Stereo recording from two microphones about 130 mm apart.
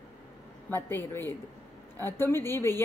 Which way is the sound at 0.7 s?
15° left (ahead or behind).